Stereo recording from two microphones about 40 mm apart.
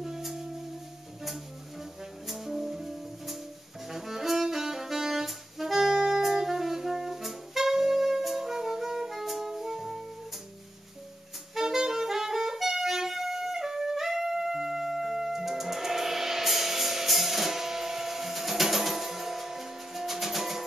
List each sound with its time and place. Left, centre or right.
0.0 s music: centre
2.2 s music: centre
3.9 s saxophone: centre
11.5 s music: centre